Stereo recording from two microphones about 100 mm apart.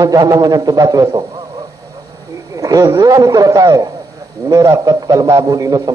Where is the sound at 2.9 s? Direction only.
35° right (ahead or behind).